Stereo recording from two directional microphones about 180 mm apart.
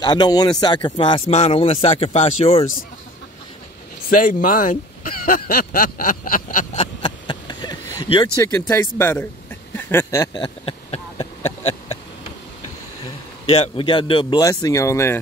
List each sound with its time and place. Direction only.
0.0 s speech: 20° left (ahead or behind)
4.1 s speech: 50° left (ahead or behind); by 9.3 s 10° left (ahead or behind)
9.8 s a sound: 10° left (ahead or behind); by 11.7 s 35° left (ahead or behind)
13.5 s speech: 30° left (ahead or behind); by 15.1 s 15° left (ahead or behind)